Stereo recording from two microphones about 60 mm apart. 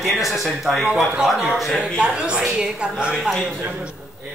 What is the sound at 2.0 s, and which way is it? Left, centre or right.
A woman's voice, centre.